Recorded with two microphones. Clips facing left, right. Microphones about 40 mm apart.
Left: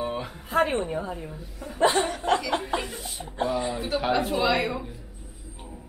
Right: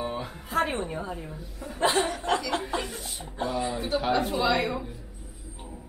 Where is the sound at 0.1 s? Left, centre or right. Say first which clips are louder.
Left 2 dB; centre.